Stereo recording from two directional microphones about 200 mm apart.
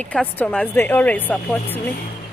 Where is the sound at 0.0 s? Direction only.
5° left (ahead or behind).